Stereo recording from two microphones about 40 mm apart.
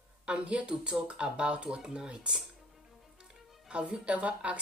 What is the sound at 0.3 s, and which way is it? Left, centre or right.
Speech, right.